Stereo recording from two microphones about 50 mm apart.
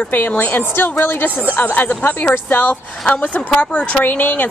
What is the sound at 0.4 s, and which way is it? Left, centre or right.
A woman's voice, left.